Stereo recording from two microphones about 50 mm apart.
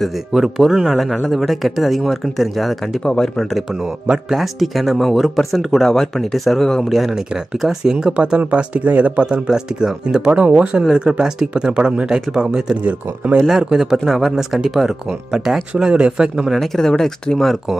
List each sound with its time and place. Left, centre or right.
0.3 s speech: centre
0.9 s speech: centre
3.0 s speech: centre
3.7 s speech: centre
7.9 s speech: centre
8.4 s speech: right
9.5 s speech: centre
13.5 s speech: centre
15.9 s speech: right
16.5 s speech: centre